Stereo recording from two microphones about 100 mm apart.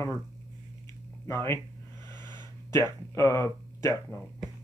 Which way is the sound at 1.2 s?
30° left (ahead or behind).